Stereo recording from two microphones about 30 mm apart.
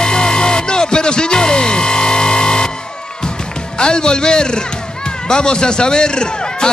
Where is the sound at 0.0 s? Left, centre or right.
Left.